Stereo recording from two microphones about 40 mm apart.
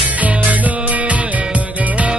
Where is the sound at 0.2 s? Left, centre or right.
Right.